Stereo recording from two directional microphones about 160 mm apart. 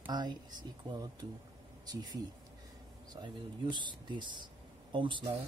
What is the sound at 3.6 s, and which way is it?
Speech, 30° right (ahead or behind).